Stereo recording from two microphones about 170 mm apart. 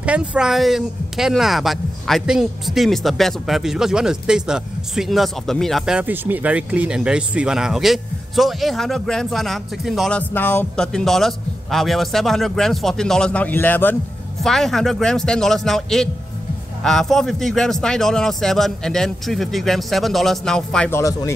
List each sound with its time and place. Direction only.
0.0 s speech: 5° right (ahead or behind)
20.9 s speech: 20° left (ahead or behind)